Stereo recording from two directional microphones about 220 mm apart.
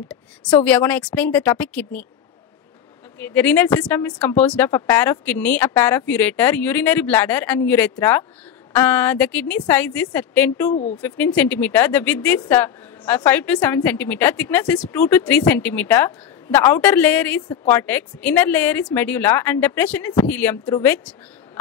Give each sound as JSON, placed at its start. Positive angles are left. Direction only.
{"t": 0.7, "sound": "a woman's voice", "side_deg": 5}
{"t": 3.2, "sound": "a woman's voice", "side_deg": 10}
{"t": 10.7, "sound": "speech", "side_deg": 30}
{"t": 11.0, "sound": "a woman's voice", "side_deg": 5}